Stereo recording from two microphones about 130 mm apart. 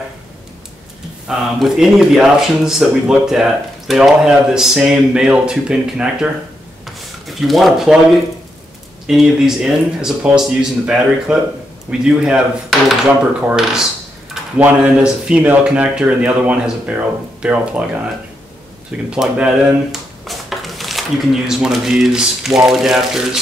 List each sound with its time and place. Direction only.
1.2 s speech: 5° right (ahead or behind)
9.0 s speech: 5° right (ahead or behind)